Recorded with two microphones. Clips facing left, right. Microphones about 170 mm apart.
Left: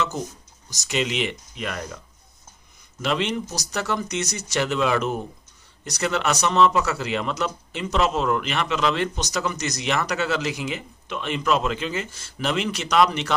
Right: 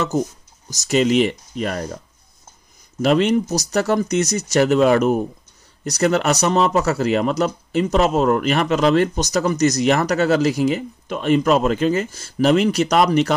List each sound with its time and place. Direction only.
0.7 s speech: 40° right (ahead or behind)
3.0 s speech: 40° right (ahead or behind)